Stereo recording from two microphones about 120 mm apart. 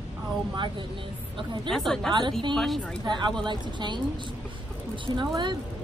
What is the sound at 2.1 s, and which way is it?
Speech, 40° right (ahead or behind).